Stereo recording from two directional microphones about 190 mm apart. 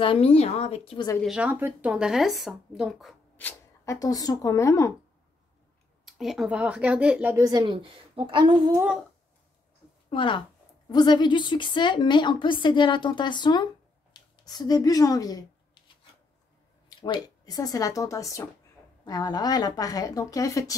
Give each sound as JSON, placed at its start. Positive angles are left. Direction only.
{"t": 0.0, "sound": "a woman's voice", "side_deg": 30}
{"t": 1.2, "sound": "speech", "side_deg": -5}
{"t": 6.0, "sound": "speech", "side_deg": 0}
{"t": 8.7, "sound": "speech", "side_deg": -5}
{"t": 10.0, "sound": "a woman's voice", "side_deg": 25}
{"t": 17.0, "sound": "a woman's voice", "side_deg": 20}